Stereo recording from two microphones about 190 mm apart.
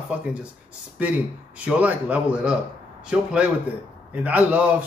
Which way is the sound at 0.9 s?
10° right (ahead or behind).